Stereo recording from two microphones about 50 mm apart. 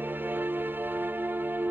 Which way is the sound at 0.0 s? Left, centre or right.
Right.